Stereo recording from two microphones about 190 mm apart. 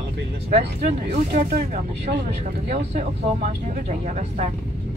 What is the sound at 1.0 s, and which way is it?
Speech, 50° right (ahead or behind).